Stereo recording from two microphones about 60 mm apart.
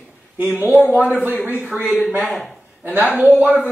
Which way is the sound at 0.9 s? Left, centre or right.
Centre.